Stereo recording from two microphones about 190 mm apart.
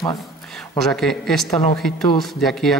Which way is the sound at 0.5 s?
Centre (ahead or behind).